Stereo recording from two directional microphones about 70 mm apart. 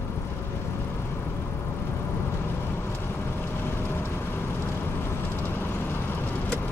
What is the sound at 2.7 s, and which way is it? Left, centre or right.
Vehicle, left.